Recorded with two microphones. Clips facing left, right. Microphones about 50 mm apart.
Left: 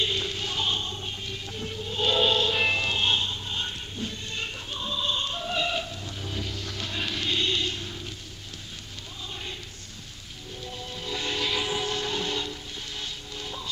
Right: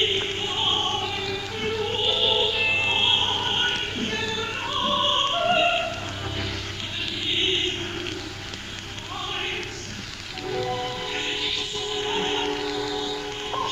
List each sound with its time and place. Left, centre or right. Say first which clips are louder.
0.0 s music: right 4 dB; right
0.7 s opera: right 8 dB; right
2.0 s music: left 3 dB; centre
2.9 s music: right 3 dB; right
3.5 s a sound: right 8 dB; right
4.6 s opera: right 9 dB; right
5.9 s a sound: right 6 dB; right
7.2 s a sound: right 3 dB; right
9.3 s choir: right 8 dB; right
10.5 s train: right 12 dB; right
11.5 s train: left 3 dB; centre
12.0 s music: right 4 dB; right